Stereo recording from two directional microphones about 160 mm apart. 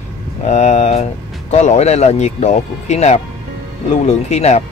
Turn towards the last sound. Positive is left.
turn(degrees=45)  # may be behind; listen again after turning